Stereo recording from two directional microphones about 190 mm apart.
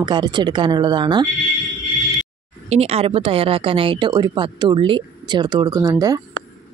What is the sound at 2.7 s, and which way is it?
A woman's voice, 30° right (ahead or behind).